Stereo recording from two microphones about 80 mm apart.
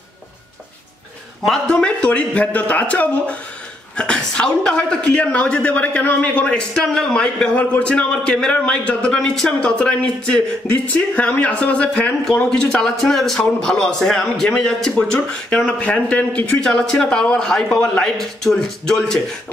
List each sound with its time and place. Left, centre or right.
1.4 s a man's voice: centre